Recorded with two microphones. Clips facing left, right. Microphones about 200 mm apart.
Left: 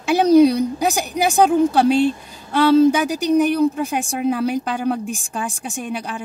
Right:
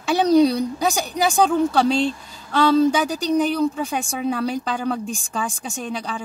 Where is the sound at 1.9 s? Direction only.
60° left (ahead or behind).